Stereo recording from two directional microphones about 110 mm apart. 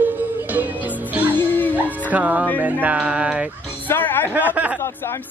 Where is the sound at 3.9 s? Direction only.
20° left (ahead or behind).